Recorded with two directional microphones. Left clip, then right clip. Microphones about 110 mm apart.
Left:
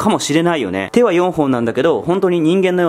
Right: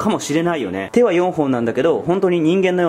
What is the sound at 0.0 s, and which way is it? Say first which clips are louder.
Speech: left 4 dB; 20° left (ahead or behind).